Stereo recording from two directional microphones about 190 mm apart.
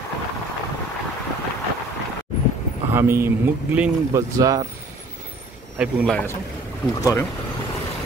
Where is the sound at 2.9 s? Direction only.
10° right (ahead or behind).